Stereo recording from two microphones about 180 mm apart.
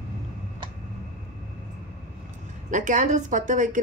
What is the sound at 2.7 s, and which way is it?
Speech, 45° right (ahead or behind).